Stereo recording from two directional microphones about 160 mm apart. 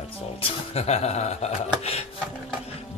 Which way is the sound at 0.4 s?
40° left (ahead or behind).